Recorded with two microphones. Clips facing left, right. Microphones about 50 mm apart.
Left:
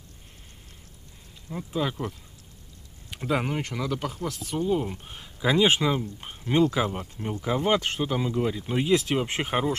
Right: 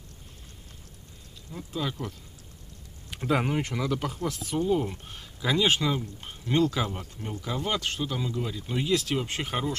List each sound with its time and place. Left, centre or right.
1.5 s speech: centre
3.1 s speech: centre; by 9.8 s left